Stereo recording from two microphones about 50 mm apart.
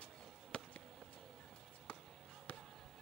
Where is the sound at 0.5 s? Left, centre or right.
Left.